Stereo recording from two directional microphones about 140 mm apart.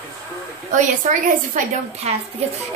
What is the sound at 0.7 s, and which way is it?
A woman's voice, 65° right (ahead or behind).